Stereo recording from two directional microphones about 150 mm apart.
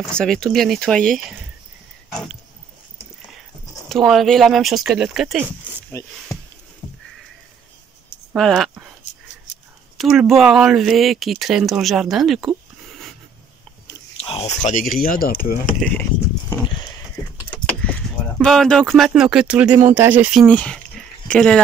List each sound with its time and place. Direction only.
0.1 s speech: 5° left (ahead or behind)
3.9 s speech: centre (ahead or behind)
8.4 s speech: centre (ahead or behind)
9.9 s speech: centre (ahead or behind)
14.1 s oink: 40° left (ahead or behind)
14.6 s speech: 60° left (ahead or behind)
15.8 s speech: 10° left (ahead or behind)
18.4 s speech: 5° left (ahead or behind)
20.4 s speech: 5° left (ahead or behind)